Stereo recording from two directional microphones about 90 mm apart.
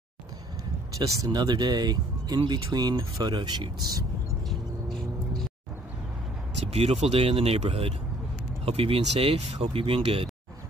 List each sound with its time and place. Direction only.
0.9 s speech: 45° right (ahead or behind)
4.5 s vehicle: centre (ahead or behind)
6.8 s speech: 90° right